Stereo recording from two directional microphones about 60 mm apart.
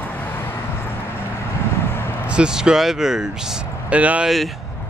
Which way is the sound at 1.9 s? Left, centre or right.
Left.